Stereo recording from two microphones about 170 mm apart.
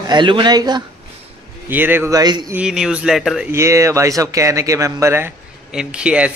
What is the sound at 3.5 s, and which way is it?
A man's voice, 15° right (ahead or behind).